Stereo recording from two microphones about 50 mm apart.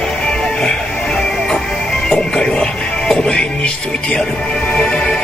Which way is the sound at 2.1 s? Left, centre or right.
Centre.